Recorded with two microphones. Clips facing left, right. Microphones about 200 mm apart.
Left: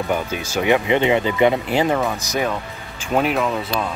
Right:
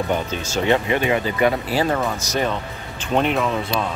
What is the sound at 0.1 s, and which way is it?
Speech, 10° left (ahead or behind).